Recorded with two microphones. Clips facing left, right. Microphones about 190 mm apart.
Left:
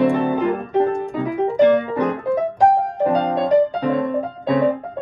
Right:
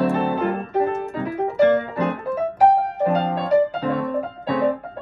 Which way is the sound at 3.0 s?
15° left (ahead or behind).